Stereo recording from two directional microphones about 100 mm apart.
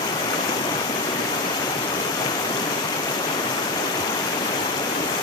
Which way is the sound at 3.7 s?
50° left (ahead or behind).